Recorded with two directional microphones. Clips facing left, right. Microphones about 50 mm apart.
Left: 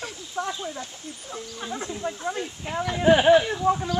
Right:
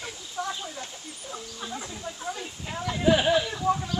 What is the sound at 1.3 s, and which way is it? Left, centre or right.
Speech, left.